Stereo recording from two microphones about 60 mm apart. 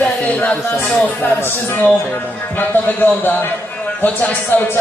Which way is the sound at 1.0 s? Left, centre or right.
Left.